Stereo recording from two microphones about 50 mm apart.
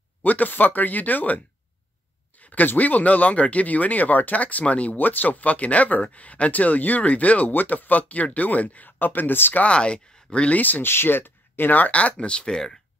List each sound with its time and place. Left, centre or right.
0.2 s speech: left
2.5 s speech: left
9.6 s speech: left
10.5 s speech: left
10.9 s speech: left; by 12.7 s centre